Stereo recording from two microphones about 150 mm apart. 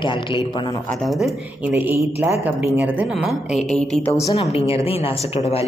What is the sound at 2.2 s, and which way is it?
A woman's voice, 20° right (ahead or behind).